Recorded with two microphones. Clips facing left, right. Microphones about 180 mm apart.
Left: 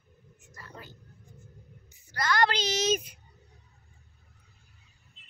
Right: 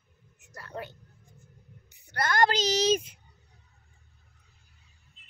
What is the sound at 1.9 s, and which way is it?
Speech, 60° right (ahead or behind).